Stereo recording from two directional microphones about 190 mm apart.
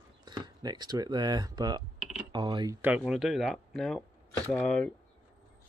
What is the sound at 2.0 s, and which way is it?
Typing, 5° right (ahead or behind).